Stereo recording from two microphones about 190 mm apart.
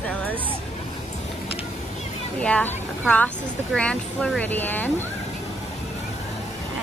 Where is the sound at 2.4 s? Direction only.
5° left (ahead or behind).